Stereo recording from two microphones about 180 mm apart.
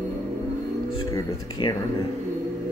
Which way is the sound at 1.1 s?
25° left (ahead or behind).